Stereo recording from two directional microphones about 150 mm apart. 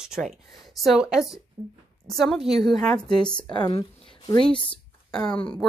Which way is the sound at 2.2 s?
Centre (ahead or behind).